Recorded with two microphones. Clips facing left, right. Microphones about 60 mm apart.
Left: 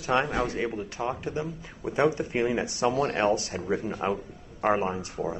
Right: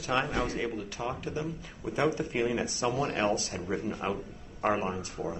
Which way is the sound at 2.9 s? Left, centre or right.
Left.